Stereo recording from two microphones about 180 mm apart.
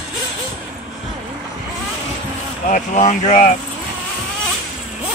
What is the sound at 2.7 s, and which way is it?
Speech, 45° left (ahead or behind).